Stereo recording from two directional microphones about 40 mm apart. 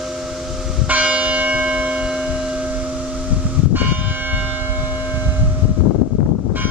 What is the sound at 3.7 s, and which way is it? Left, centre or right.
Church bell, right.